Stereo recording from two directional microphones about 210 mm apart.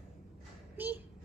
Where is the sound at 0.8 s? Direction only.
10° right (ahead or behind).